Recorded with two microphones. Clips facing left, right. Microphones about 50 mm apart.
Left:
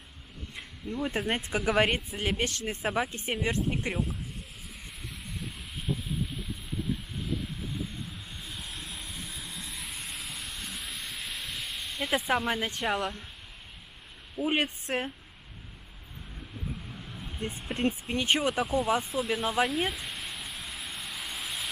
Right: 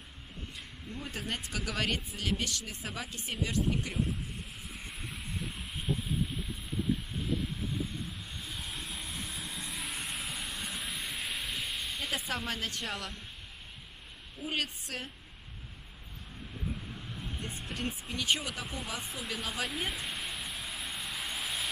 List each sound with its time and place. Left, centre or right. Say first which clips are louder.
1.0 s speech: left 8 dB; left
5.0 s vehicle: even; centre
7.2 s vehicle: right 1 dB; centre
12.4 s speech: left 7 dB; centre
14.4 s speech: left 7 dB; left
17.4 s speech: left 9 dB; left
18.5 s speech: left 12 dB; centre
19.2 s speech: left 9 dB; centre
19.7 s a sound: left 5 dB; centre